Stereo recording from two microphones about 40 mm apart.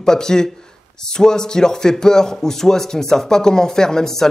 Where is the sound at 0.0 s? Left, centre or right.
Centre.